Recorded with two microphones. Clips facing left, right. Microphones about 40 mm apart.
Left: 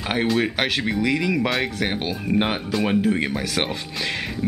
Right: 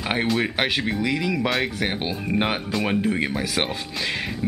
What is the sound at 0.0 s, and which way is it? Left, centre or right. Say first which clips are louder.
Speech: left 1 dB; centre.